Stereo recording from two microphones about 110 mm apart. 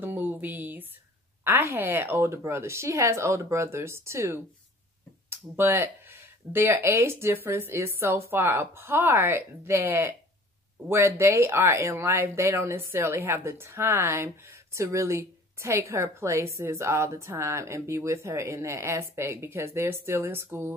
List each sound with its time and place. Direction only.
0.0 s speech: 15° right (ahead or behind)